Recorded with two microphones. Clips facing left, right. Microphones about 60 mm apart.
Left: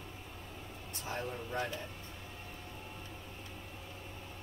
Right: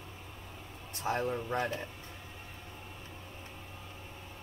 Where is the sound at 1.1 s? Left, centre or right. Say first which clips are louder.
Right 8 dB; right.